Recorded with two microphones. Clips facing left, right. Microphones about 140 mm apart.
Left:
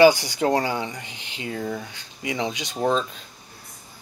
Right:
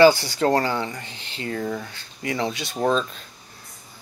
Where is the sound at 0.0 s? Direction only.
15° left (ahead or behind).